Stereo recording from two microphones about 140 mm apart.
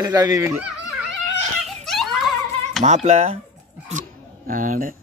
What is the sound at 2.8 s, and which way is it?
Speech, 50° right (ahead or behind).